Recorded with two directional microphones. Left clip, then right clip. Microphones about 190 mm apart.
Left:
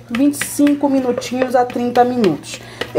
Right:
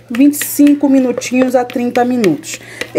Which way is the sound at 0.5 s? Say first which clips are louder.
Right 5 dB; 30° right (ahead or behind).